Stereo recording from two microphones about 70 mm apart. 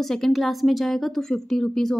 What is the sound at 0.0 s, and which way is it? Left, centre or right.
A woman's voice, centre.